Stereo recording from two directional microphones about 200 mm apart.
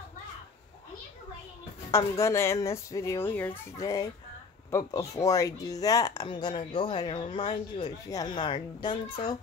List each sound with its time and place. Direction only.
1.9 s speech: 15° left (ahead or behind)